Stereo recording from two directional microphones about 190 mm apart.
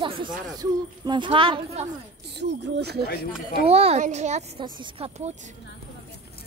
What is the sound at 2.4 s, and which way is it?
Speech, 60° right (ahead or behind).